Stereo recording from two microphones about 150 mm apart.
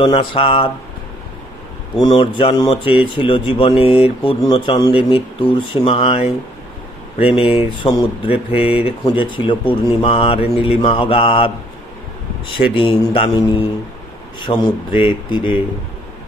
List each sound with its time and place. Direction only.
0.0 s speech: 35° left (ahead or behind)
2.0 s speech: 30° left (ahead or behind)
14.4 s speech: 35° left (ahead or behind)